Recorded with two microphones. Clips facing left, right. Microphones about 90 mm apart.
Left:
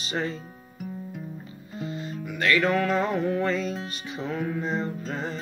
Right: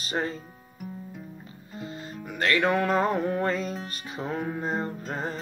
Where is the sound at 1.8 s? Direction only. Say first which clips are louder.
Left 4 dB; 40° right (ahead or behind).